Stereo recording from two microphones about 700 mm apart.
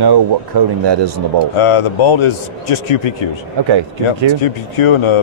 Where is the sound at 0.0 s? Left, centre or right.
Right.